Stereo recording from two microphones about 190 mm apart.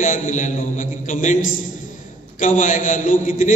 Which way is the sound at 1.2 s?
45° left (ahead or behind).